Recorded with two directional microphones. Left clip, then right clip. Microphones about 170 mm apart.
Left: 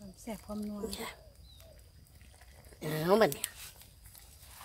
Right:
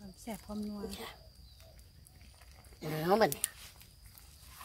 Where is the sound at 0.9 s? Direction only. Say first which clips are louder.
Left 4 dB; 50° left (ahead or behind).